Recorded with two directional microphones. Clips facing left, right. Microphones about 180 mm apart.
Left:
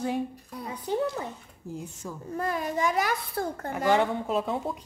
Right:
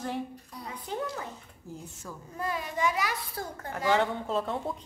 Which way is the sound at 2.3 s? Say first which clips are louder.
Left 4 dB; 50° left (ahead or behind).